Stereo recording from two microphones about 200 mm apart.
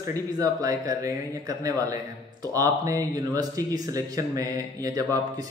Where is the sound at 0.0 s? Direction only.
15° right (ahead or behind).